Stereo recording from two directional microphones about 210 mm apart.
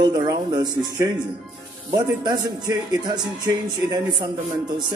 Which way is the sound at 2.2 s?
20° right (ahead or behind).